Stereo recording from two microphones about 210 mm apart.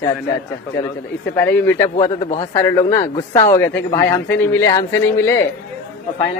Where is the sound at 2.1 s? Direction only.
30° left (ahead or behind).